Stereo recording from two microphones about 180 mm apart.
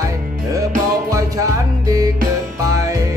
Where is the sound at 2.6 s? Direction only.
15° right (ahead or behind).